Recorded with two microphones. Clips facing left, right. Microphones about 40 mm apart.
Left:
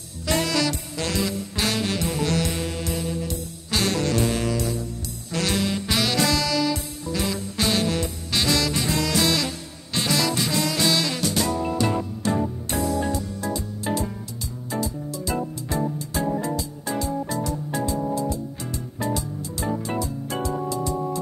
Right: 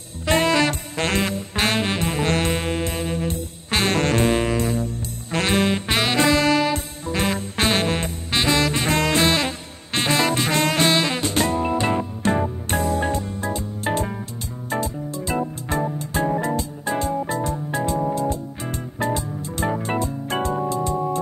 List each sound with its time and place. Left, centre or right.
0.3 s music: right